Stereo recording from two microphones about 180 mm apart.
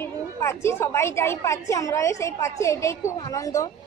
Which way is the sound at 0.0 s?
15° left (ahead or behind).